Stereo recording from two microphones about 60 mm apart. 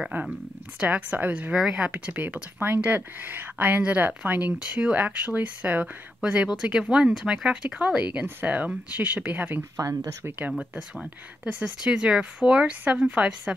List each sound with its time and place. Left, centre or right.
0.7 s speech: right
1.5 s speech: centre; by 10.5 s right
11.8 s speech: centre